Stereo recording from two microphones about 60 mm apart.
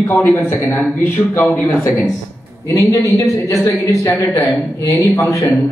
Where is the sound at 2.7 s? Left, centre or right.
Left.